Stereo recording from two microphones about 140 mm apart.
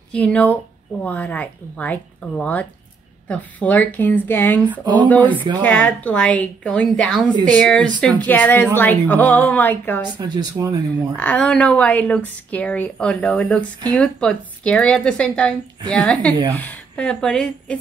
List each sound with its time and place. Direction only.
0.1 s a woman's voice: 10° left (ahead or behind)
10.1 s speech: 30° right (ahead or behind)
11.1 s a woman's voice: 10° left (ahead or behind)